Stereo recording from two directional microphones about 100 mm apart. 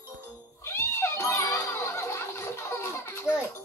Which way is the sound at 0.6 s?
25° left (ahead or behind).